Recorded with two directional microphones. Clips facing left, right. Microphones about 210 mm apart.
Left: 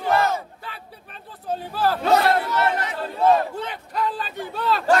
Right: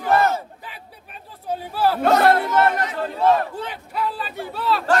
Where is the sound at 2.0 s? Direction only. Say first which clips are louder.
Right 3 dB; 55° right (ahead or behind).